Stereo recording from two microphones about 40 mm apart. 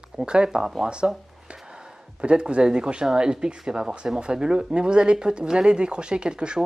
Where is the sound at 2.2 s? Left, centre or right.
Right.